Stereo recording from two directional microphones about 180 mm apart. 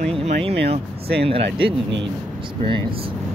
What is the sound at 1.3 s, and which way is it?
Speech, 30° right (ahead or behind).